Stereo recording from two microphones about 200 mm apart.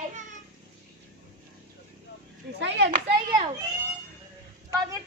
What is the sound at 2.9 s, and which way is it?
Speech, 40° right (ahead or behind).